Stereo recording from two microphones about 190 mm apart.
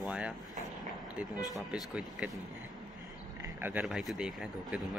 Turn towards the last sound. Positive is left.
turn(degrees=-5)  # may be behind; listen again after turning